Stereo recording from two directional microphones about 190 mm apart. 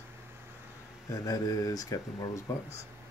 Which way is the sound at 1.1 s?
20° left (ahead or behind).